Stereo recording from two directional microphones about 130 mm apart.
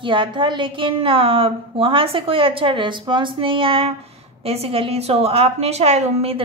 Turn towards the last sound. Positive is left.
turn(degrees=-55)  # may be behind; listen again after turning